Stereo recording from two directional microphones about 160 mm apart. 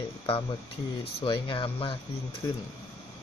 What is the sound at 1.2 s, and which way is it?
Speech, 30° left (ahead or behind).